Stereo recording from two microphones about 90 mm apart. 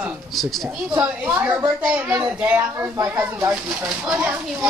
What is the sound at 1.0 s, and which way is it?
Speech, 20° right (ahead or behind).